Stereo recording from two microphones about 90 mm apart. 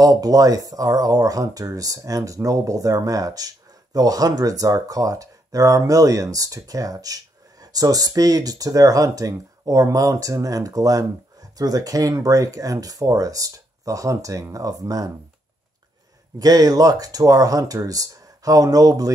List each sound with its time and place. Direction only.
0.0 s speech: 45° right (ahead or behind)
16.3 s speech: 45° right (ahead or behind)